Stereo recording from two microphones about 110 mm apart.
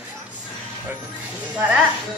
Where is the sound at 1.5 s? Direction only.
10° right (ahead or behind).